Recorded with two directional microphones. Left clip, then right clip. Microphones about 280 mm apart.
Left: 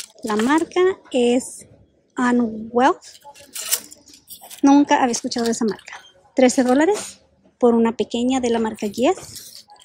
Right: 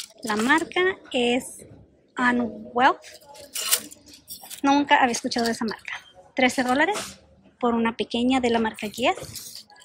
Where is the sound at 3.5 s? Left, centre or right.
Centre.